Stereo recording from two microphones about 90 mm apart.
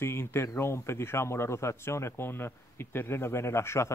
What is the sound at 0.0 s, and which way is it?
A man's voice, 25° left (ahead or behind).